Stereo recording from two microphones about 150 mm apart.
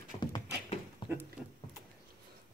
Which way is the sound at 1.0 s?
35° left (ahead or behind).